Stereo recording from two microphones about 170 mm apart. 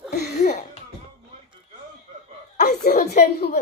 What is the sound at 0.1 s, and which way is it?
Speech, 70° left (ahead or behind).